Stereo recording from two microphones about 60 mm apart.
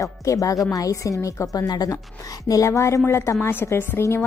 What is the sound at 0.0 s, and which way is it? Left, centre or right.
A woman's voice, left.